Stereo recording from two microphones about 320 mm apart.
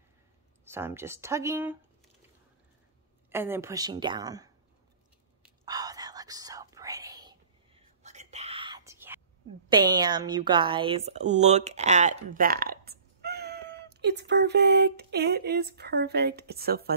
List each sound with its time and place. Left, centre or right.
0.7 s a woman's voice: centre
3.3 s a woman's voice: centre
5.4 s whispering: centre
9.8 s a woman's voice: centre; by 16.9 s right